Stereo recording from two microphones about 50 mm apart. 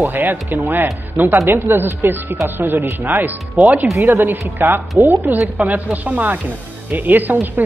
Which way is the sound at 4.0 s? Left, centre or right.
Right.